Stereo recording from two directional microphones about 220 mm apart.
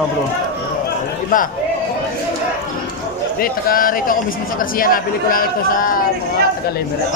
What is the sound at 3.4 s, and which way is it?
Speech, 40° left (ahead or behind).